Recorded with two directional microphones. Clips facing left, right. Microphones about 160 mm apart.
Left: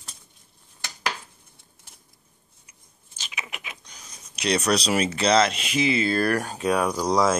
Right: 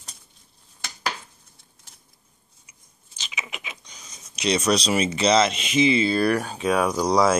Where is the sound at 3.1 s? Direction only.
5° left (ahead or behind).